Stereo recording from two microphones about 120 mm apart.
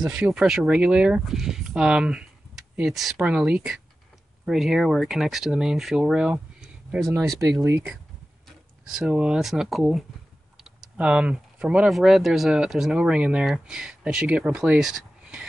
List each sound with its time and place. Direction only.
0.1 s speech: 10° right (ahead or behind)
7.1 s speech: 25° right (ahead or behind)
8.5 s speech: 5° right (ahead or behind)